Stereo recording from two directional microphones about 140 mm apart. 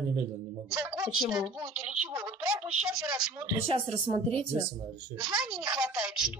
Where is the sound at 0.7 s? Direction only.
5° right (ahead or behind).